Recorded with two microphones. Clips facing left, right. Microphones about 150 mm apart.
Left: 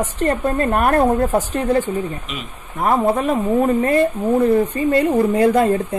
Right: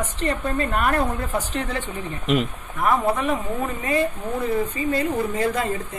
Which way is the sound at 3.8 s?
55° left (ahead or behind).